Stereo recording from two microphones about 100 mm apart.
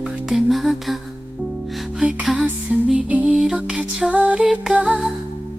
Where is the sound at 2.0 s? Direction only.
5° right (ahead or behind).